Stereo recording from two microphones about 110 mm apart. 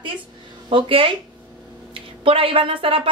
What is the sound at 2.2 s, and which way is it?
Speech, 55° right (ahead or behind).